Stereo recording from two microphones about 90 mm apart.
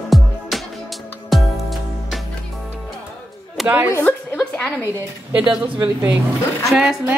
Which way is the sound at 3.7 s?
20° right (ahead or behind).